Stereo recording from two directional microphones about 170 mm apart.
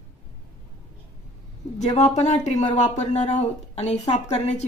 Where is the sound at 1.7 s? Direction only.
45° left (ahead or behind).